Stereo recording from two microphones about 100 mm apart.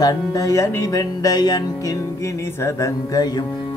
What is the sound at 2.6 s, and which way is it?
Music, 30° left (ahead or behind).